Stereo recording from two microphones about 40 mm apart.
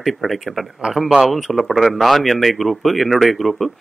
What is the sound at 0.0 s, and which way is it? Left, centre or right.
Speech, centre.